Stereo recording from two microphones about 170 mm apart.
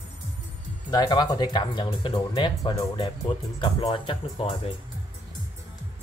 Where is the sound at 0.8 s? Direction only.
25° left (ahead or behind).